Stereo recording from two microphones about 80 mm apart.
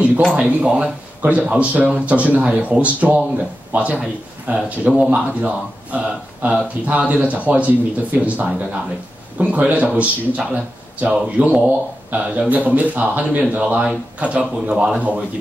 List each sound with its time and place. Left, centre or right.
0.4 s a man's voice: centre